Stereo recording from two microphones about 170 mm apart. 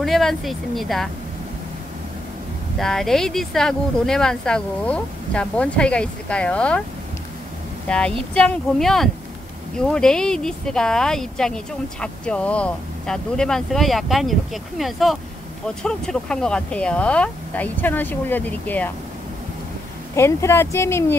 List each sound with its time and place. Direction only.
0.0 s speech: centre (ahead or behind)
2.8 s speech: centre (ahead or behind)
7.9 s speech: 5° left (ahead or behind)
20.2 s speech: 15° left (ahead or behind)